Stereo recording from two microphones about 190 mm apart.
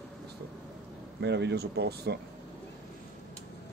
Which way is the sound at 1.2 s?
65° right (ahead or behind).